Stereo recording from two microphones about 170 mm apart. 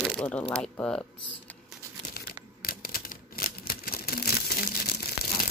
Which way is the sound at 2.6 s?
55° left (ahead or behind).